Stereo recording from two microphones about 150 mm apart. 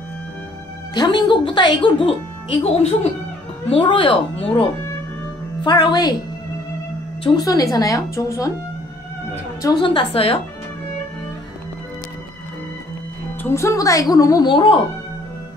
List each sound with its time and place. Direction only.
0.9 s a woman's voice: 30° left (ahead or behind)
7.2 s a woman's voice: 25° left (ahead or behind)
9.6 s speech: 25° left (ahead or behind)
13.4 s a woman's voice: 15° left (ahead or behind); by 14.8 s 35° left (ahead or behind)